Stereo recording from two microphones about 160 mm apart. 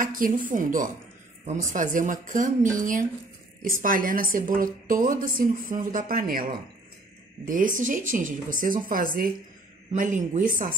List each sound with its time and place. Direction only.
0.0 s a woman's voice: 60° right (ahead or behind)
7.4 s a woman's voice: 55° right (ahead or behind)